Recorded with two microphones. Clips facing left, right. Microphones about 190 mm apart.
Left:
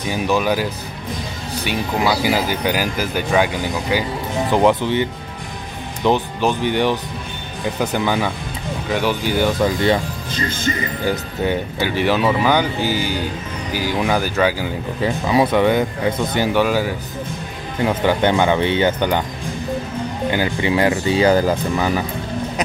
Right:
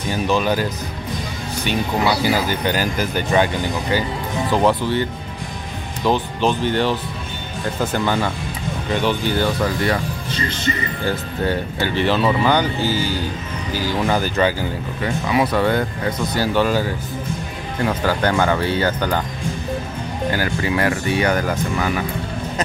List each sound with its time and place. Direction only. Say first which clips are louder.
0.1 s speech: left 1 dB; 10° left (ahead or behind)
2.2 s speech: left 1 dB; 10° left (ahead or behind)
6.0 s speech: left 1 dB; 15° left (ahead or behind)
9.8 s speech: left 3 dB; 25° left (ahead or behind)
11.1 s speech: left 1 dB; 15° left (ahead or behind)
15.0 s speech: left 3 dB; 25° left (ahead or behind)
20.2 s speech: left 2 dB; 20° left (ahead or behind)